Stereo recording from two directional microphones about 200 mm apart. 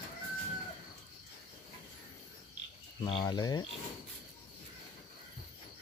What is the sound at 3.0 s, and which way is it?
Speech, 20° left (ahead or behind).